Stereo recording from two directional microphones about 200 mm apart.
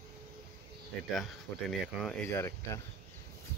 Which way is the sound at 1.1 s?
Centre (ahead or behind).